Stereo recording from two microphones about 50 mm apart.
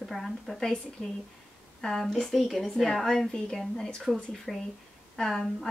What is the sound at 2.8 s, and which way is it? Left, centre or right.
A woman's voice, centre.